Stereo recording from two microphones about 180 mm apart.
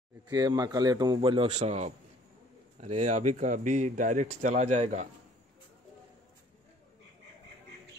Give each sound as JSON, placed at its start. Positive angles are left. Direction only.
{"t": 0.3, "sound": "a man's voice", "side_deg": -20}